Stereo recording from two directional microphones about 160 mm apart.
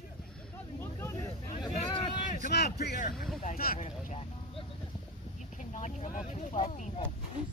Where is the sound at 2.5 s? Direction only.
90° left; by 3.2 s 70° left (ahead or behind).